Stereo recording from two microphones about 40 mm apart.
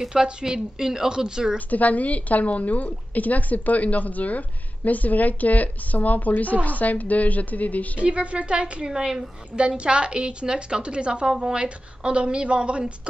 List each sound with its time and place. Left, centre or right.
0.1 s a woman's voice: centre
1.7 s a woman's voice: left
8.0 s a woman's voice: right
8.8 s a woman's voice: centre